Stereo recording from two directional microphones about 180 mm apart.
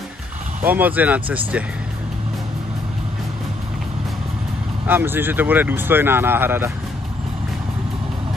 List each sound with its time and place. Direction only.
0.7 s speech: 10° right (ahead or behind)
4.8 s speech: 10° right (ahead or behind)